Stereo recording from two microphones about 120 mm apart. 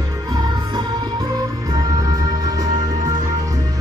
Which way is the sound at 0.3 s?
35° right (ahead or behind).